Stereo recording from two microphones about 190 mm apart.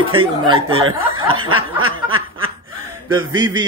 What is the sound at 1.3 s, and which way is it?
Snicker, 90° right.